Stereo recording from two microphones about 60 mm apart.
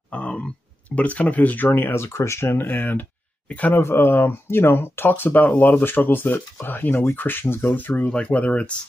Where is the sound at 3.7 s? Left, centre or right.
Left.